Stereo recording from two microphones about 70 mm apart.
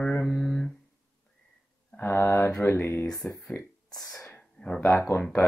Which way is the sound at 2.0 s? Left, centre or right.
Left.